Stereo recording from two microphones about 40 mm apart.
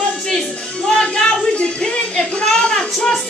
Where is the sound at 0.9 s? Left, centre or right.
Left.